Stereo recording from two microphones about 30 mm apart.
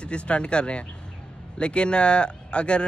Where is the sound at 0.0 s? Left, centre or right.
Left.